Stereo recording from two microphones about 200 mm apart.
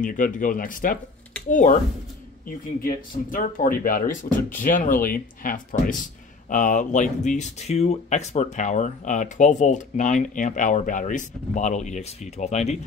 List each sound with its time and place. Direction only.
0.0 s speech: 40° left (ahead or behind)